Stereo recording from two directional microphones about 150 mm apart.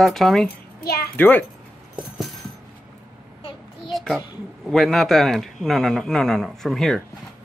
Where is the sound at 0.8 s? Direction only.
90° left.